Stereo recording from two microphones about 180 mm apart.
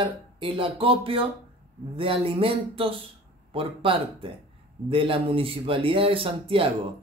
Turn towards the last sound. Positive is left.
turn(degrees=-30)  # may be behind; listen again after turning